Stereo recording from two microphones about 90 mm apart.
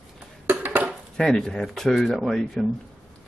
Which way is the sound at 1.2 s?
5° left (ahead or behind).